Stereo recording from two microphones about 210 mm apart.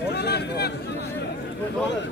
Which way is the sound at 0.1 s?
50° left (ahead or behind).